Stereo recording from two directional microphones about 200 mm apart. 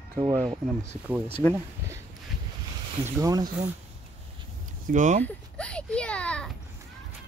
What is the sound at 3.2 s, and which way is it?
Speech, 20° right (ahead or behind).